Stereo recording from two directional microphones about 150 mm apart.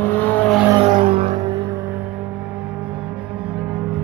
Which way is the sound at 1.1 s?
40° right (ahead or behind).